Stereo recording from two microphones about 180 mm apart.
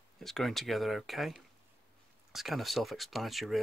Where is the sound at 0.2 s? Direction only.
Centre (ahead or behind).